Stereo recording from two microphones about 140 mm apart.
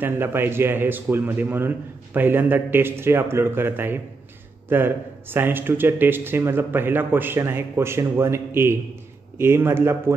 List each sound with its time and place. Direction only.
0.0 s speech: 15° right (ahead or behind)